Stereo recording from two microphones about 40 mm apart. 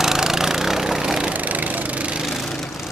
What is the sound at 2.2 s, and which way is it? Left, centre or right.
Lawn mower, centre.